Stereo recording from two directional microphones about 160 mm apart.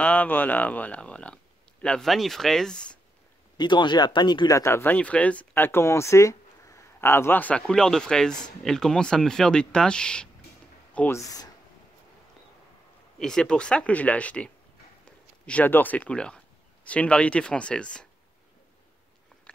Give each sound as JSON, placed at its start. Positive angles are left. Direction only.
{"t": 0.0, "sound": "speech", "side_deg": 10}
{"t": 3.5, "sound": "speech", "side_deg": 30}
{"t": 10.9, "sound": "a sound", "side_deg": 10}
{"t": 11.1, "sound": "speech", "side_deg": 20}
{"t": 13.2, "sound": "speech", "side_deg": 5}